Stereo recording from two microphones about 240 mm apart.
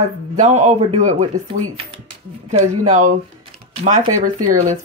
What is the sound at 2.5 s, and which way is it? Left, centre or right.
Speech, right.